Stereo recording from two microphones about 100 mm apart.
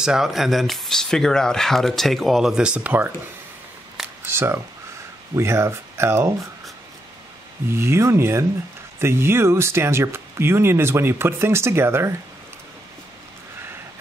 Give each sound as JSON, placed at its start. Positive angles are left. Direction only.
{"t": 0.0, "sound": "speech", "side_deg": -5}
{"t": 4.3, "sound": "speech", "side_deg": -25}
{"t": 7.6, "sound": "speech", "side_deg": -25}